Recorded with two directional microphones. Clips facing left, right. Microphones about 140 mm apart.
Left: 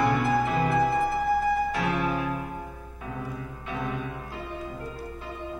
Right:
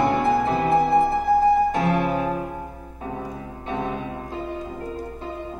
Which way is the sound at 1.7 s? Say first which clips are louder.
Right 5 dB; 45° right (ahead or behind).